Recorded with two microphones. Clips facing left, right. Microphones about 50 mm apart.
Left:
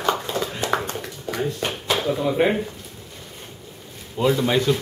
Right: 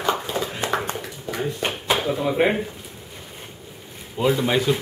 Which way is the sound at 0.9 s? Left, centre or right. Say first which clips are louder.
Left 1 dB; centre.